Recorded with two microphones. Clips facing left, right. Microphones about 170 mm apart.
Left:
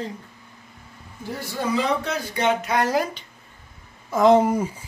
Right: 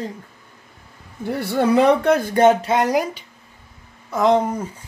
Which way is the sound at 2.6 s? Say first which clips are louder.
Right 3 dB; 20° right (ahead or behind).